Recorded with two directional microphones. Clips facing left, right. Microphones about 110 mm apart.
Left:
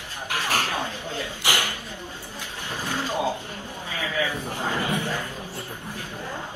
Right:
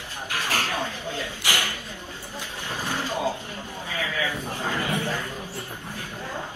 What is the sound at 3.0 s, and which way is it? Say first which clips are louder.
A man's voice: left 3 dB; 15° left (ahead or behind).